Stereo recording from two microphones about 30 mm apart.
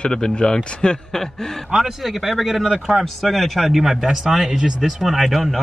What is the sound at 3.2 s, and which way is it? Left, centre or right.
Speech, centre.